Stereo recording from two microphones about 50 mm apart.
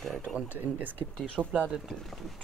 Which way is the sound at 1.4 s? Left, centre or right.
Right.